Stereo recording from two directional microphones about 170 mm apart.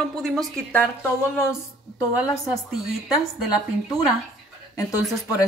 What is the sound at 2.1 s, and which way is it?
Speech, centre (ahead or behind).